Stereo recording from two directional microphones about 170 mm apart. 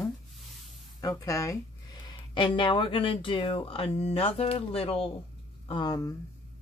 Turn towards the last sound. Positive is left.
turn(degrees=25)  # may be behind; listen again after turning